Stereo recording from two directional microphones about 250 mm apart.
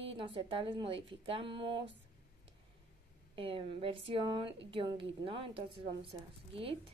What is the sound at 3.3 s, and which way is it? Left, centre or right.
A woman's voice, right.